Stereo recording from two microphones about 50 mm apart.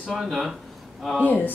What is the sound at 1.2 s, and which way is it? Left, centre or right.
Speech, left.